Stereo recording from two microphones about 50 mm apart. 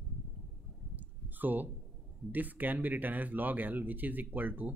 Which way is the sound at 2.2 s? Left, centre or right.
Right.